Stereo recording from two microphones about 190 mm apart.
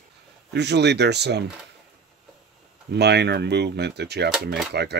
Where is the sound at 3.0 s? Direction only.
60° right (ahead or behind).